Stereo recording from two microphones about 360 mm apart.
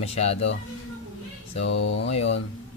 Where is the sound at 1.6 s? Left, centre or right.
Left.